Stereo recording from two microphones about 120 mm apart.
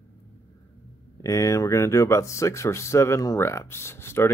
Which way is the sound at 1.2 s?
25° left (ahead or behind).